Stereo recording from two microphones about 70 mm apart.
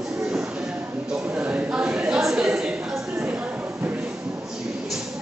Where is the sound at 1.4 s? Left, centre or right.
Centre.